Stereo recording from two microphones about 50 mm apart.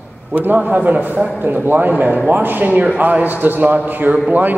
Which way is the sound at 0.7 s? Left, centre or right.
Right.